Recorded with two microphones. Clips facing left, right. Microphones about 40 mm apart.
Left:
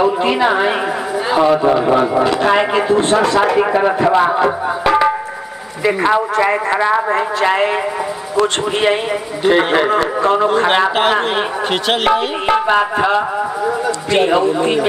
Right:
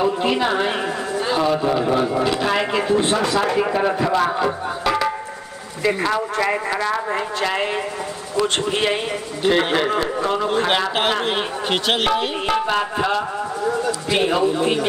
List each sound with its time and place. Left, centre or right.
0.0 s speech: centre
3.0 s speech: centre
3.5 s speech: centre
9.4 s speech: centre